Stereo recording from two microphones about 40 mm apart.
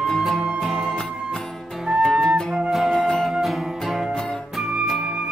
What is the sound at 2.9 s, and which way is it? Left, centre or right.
Music, centre.